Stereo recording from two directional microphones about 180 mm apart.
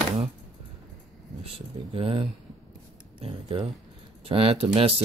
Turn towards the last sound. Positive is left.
turn(degrees=-30)  # may be behind; listen again after turning